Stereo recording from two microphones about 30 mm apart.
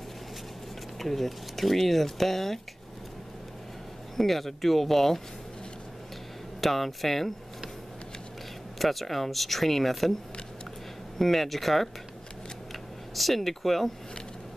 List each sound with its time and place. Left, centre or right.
0.9 s speech: centre
4.2 s speech: centre
6.6 s speech: centre
8.7 s speech: centre
11.1 s speech: centre
13.1 s speech: centre